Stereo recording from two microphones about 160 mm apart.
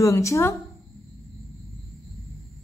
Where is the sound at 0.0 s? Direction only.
20° left (ahead or behind).